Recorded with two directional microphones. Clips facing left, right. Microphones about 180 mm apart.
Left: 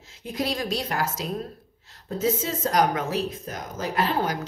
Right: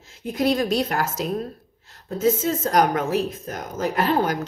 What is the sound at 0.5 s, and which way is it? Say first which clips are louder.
A woman's voice: right 10 dB; 55° right (ahead or behind).